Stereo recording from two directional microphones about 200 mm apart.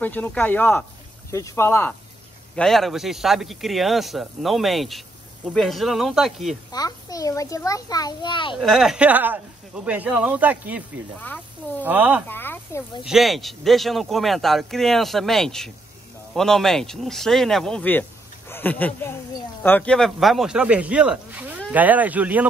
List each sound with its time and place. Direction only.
0.0 s a child's voice: 10° left (ahead or behind)
6.7 s a child's voice: 20° left (ahead or behind)
8.5 s speech: centre (ahead or behind)
11.1 s a child's voice: 10° left (ahead or behind)
11.8 s speech: 10° right (ahead or behind)
12.3 s a child's voice: 10° left (ahead or behind)
13.0 s speech: centre (ahead or behind)